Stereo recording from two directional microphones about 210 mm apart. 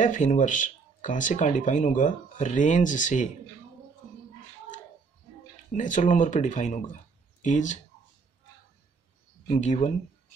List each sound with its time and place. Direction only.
0.0 s speech: 35° left (ahead or behind)
5.7 s speech: 35° left (ahead or behind)
9.5 s speech: 35° left (ahead or behind)